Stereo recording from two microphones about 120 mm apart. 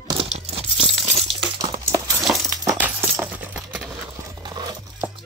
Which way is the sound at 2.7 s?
15° right (ahead or behind).